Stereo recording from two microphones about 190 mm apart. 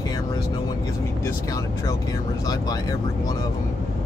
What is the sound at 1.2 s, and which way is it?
Speech, 15° left (ahead or behind).